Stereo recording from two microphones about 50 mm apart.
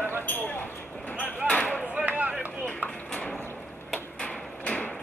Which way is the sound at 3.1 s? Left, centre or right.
Centre.